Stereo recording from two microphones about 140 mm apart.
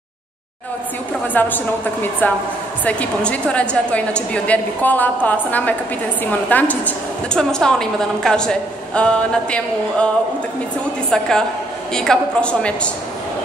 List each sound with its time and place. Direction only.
1.2 s a woman's voice: 15° left (ahead or behind)
11.1 s a woman's voice: 5° left (ahead or behind)